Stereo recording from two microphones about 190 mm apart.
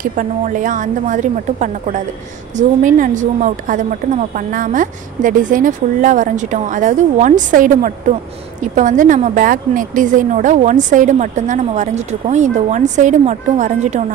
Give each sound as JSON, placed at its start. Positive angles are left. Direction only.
{"t": 0.0, "sound": "a woman's voice", "side_deg": -45}